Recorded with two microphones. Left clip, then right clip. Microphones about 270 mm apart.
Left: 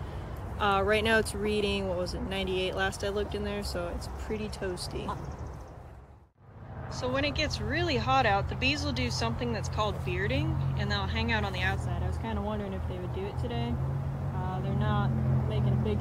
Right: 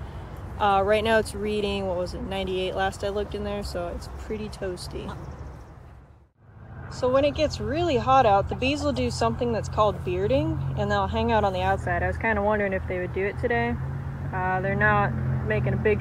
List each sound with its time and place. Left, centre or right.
0.6 s speech: centre
7.0 s speech: centre
12.2 s speech: left